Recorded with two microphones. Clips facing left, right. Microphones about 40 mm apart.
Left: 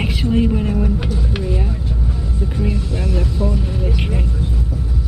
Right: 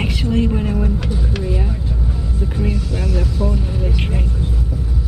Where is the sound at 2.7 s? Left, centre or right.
Centre.